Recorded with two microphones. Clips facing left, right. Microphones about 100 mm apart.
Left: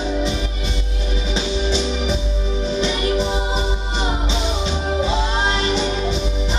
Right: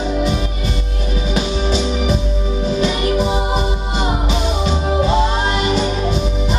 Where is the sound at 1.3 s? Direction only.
5° right (ahead or behind).